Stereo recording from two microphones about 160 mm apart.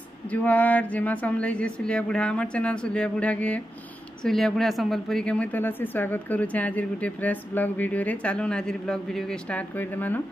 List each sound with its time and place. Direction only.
0.3 s a woman's voice: 10° left (ahead or behind)